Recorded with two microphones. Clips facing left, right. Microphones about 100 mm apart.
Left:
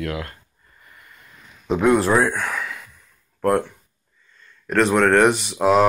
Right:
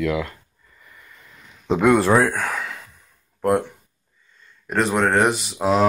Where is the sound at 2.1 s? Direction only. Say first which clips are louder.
Right 1 dB; 75° right (ahead or behind).